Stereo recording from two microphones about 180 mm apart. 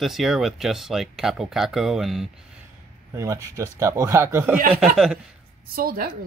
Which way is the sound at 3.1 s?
15° right (ahead or behind).